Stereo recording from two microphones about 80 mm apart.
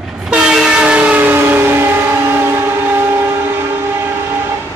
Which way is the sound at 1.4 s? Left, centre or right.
Right.